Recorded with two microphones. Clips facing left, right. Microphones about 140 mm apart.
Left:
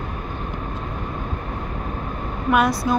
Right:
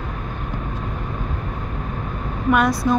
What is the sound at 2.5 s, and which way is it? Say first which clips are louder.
Speech: right 1 dB; centre (ahead or behind).